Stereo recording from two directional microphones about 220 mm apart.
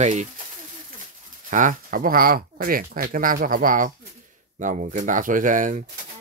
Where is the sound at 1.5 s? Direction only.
35° right (ahead or behind).